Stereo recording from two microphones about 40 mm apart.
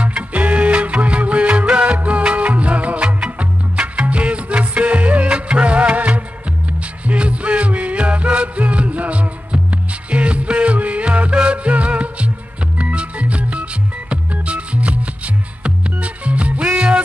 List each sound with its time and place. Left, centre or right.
0.0 s music: right